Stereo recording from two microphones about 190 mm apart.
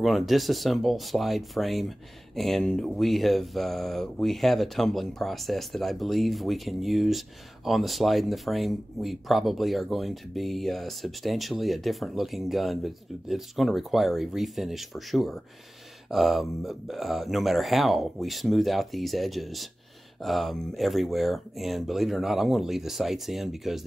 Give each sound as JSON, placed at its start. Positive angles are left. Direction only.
{"t": 0.0, "sound": "speech", "side_deg": 0}